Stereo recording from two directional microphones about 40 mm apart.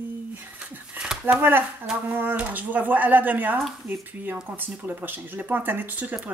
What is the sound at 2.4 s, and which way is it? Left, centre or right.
Speech, right.